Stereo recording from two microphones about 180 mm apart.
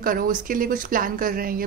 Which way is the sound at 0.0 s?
50° right (ahead or behind).